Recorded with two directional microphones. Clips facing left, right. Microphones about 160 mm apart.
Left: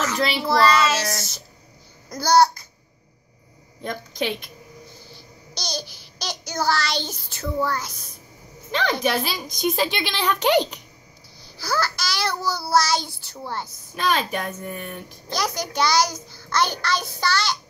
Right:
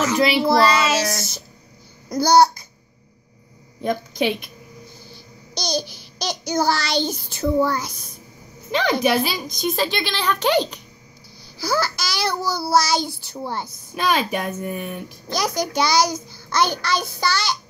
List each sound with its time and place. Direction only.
0.0 s child singing: 10° right (ahead or behind)
2.0 s speech: 15° right (ahead or behind)
3.8 s child singing: 10° right (ahead or behind)
5.5 s child singing: 15° right (ahead or behind)
9.5 s speech: 10° left (ahead or behind)
11.5 s child singing: 10° right (ahead or behind)